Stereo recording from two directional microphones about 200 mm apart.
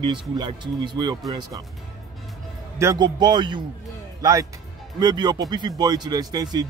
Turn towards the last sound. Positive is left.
turn(degrees=-20)  # may be behind; listen again after turning